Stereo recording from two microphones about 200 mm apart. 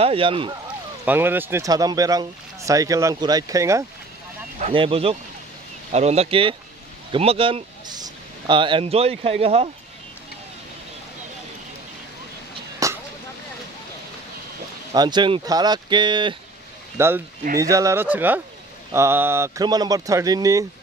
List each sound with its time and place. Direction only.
0.0 s speech: 25° right (ahead or behind)
1.0 s speech: 10° right (ahead or behind)
4.6 s speech: 30° right (ahead or behind)
12.8 s a sound: 15° right (ahead or behind)
15.0 s speech: 20° right (ahead or behind)
16.9 s speech: 10° right (ahead or behind)